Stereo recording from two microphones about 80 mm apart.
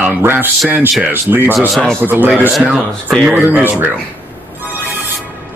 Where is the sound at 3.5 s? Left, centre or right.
Right.